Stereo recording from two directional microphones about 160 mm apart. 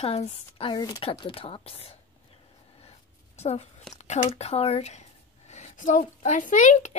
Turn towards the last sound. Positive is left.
turn(degrees=50)  # may be behind; listen again after turning